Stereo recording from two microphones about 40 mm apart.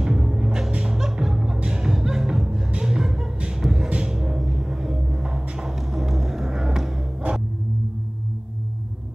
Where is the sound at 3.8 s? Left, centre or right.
Right.